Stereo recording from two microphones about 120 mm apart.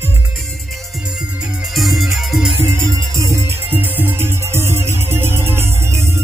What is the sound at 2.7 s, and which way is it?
Music, 25° right (ahead or behind).